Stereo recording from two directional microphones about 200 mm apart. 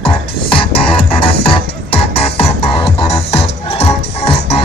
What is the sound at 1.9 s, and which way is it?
Music, 25° left (ahead or behind).